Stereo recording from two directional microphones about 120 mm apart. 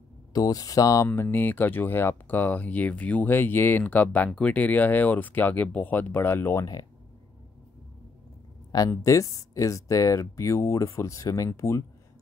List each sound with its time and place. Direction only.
0.3 s speech: 30° left (ahead or behind)
8.9 s speech: 25° left (ahead or behind)